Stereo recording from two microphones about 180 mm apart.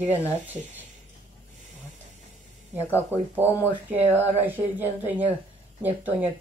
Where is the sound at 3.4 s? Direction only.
15° left (ahead or behind).